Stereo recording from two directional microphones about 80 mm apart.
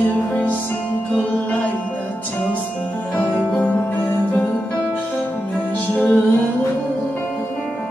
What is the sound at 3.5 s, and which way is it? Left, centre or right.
Music, centre.